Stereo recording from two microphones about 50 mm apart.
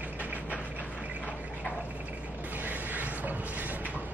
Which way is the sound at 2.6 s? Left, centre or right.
Right.